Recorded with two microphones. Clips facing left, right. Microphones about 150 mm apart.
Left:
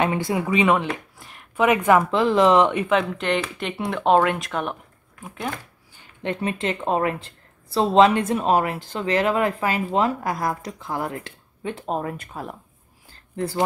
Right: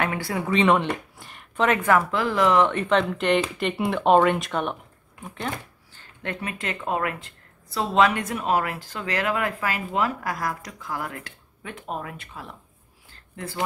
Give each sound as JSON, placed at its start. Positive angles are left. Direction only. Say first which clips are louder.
{"t": 0.0, "sound": "a woman's voice", "louder": "left 4 dB", "side_deg": 20}
{"t": 0.5, "sound": "speech", "louder": "right 1 dB", "side_deg": 5}
{"t": 1.7, "sound": "speech", "louder": "left 4 dB", "side_deg": 20}
{"t": 5.9, "sound": "a woman's voice", "louder": "left 5 dB", "side_deg": 25}
{"t": 13.1, "sound": "a sound", "louder": "left 8 dB", "side_deg": 35}